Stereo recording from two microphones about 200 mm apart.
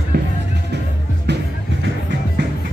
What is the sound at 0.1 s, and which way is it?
Music, 55° right (ahead or behind).